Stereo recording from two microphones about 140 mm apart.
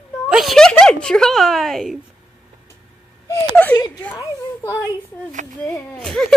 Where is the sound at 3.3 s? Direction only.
10° left (ahead or behind).